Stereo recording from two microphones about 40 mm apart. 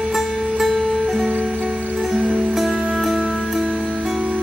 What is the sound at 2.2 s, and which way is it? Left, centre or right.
Music, right.